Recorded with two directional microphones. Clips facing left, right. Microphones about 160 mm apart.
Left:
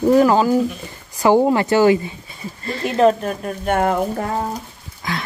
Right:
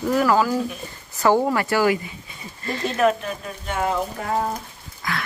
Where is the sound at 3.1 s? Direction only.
45° left (ahead or behind).